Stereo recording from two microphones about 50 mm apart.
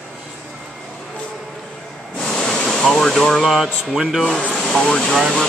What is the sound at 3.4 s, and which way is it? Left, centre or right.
Speech, centre.